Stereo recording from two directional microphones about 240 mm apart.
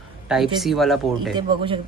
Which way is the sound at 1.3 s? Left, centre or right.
Centre.